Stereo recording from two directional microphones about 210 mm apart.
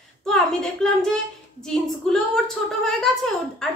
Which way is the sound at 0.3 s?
Centre (ahead or behind).